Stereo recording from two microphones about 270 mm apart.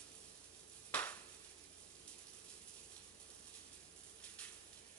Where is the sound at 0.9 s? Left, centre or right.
Centre.